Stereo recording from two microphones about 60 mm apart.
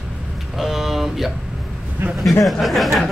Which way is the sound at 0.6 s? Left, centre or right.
Centre.